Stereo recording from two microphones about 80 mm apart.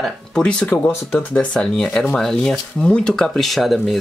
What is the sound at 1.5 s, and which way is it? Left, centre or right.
Speech, centre.